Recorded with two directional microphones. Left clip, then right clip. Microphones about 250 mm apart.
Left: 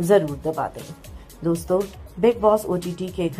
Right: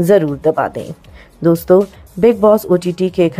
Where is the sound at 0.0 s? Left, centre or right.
Right.